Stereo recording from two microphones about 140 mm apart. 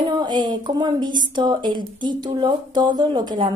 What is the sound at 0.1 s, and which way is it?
A woman's voice, 30° right (ahead or behind).